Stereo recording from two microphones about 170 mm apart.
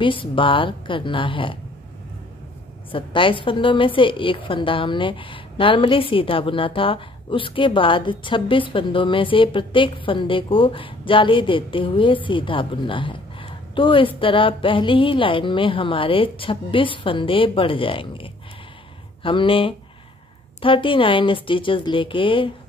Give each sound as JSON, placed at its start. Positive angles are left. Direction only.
{"t": 0.0, "sound": "a woman's voice", "side_deg": 30}
{"t": 2.9, "sound": "a woman's voice", "side_deg": 30}